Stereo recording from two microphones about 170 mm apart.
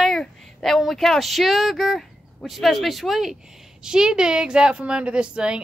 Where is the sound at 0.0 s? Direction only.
Centre (ahead or behind).